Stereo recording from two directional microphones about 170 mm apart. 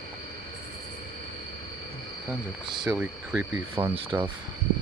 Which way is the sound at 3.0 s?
10° right (ahead or behind).